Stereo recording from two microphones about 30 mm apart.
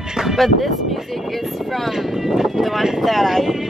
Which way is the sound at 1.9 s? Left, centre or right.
Centre.